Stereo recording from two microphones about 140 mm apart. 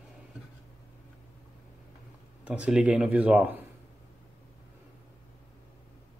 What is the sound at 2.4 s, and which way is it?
Speech, 10° right (ahead or behind).